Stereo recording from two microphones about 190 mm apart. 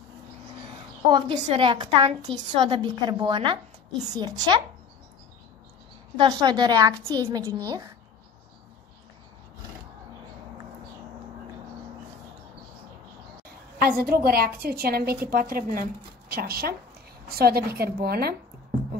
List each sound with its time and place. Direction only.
1.1 s a woman's voice: 25° right (ahead or behind)
6.1 s a woman's voice: 25° right (ahead or behind)
13.7 s a woman's voice: 50° right (ahead or behind)